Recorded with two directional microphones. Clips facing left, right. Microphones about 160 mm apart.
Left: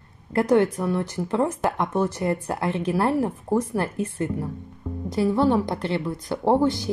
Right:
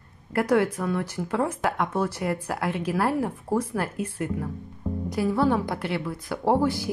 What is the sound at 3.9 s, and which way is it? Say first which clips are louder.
Speech: left 3 dB; 20° left (ahead or behind).